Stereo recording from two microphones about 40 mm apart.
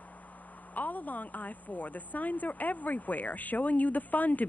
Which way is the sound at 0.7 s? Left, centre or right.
Left.